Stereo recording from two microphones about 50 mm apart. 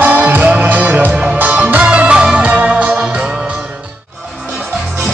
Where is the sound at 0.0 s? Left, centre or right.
Right.